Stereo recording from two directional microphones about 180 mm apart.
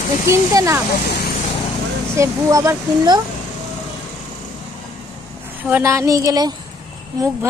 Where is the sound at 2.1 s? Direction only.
15° right (ahead or behind).